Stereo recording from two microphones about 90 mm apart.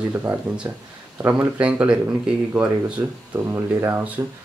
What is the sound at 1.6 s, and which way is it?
Speech, 15° right (ahead or behind).